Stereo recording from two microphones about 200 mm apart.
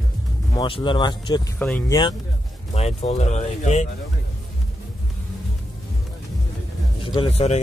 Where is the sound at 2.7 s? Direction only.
30° left (ahead or behind).